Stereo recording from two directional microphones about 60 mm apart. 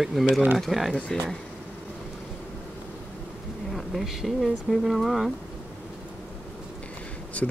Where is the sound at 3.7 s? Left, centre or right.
Centre.